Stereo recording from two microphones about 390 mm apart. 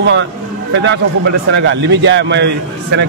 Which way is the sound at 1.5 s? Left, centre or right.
Right.